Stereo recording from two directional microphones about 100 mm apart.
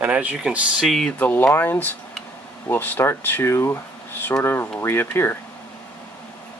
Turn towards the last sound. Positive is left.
turn(degrees=25)  # may be behind; listen again after turning